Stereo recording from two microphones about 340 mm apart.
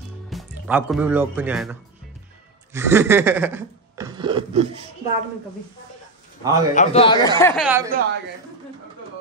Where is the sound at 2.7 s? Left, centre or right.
Centre.